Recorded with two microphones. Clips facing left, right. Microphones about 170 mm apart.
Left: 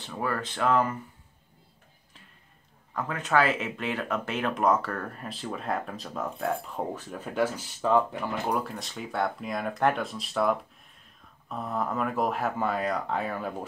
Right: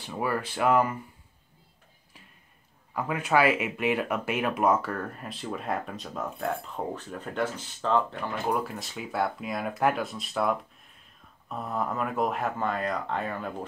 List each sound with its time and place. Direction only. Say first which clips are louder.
0.0 s speech: right 1 dB; 10° right (ahead or behind)
2.9 s speech: right 1 dB; 10° right (ahead or behind); by 8.2 s 10° left (ahead or behind)
8.5 s speech: right 1 dB; centre (ahead or behind)